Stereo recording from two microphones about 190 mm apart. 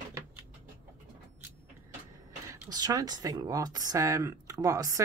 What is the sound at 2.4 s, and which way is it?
Speech, 20° right (ahead or behind).